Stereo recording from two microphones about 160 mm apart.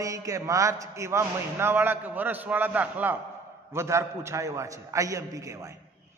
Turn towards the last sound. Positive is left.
turn(degrees=-20)  # may be behind; listen again after turning